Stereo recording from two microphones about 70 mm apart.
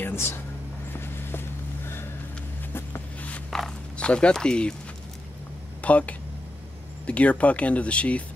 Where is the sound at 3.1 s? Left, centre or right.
Left.